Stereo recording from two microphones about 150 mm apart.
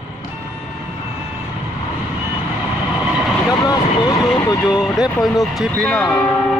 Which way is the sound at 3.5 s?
25° left (ahead or behind).